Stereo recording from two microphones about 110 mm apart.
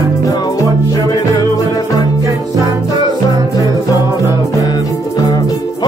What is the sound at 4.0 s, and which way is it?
Music, 30° right (ahead or behind).